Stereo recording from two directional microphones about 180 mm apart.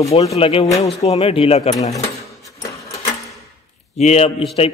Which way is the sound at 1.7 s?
20° left (ahead or behind).